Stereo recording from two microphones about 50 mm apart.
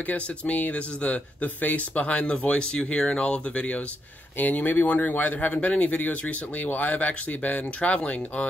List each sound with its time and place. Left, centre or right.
0.0 s speech: left
4.4 s speech: left